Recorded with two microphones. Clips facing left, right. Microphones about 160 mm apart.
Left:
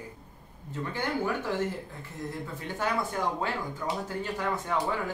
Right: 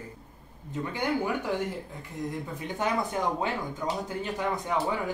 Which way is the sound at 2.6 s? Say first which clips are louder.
Right 1 dB; 20° right (ahead or behind).